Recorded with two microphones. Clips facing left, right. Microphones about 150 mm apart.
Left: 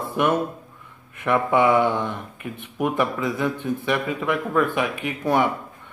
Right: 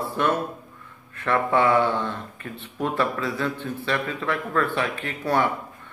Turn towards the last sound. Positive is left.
turn(degrees=15)  # may be behind; listen again after turning